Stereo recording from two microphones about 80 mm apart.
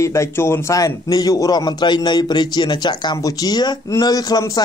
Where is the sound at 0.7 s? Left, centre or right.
Left.